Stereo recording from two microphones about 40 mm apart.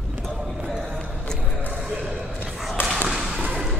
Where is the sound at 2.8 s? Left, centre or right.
Left.